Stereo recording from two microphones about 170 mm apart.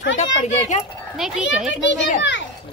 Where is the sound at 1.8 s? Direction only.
90° left.